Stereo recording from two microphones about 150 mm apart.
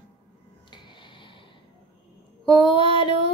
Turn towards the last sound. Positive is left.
turn(degrees=35)  # may be behind; listen again after turning